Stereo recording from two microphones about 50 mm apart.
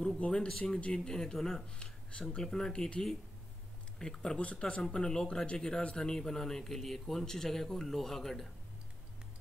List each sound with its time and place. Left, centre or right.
0.2 s speech: centre
0.5 s speech: centre
0.7 s speech: left